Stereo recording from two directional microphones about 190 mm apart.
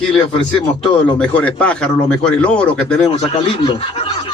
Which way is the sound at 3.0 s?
25° left (ahead or behind).